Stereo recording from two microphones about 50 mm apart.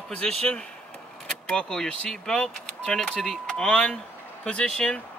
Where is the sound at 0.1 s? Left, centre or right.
Left.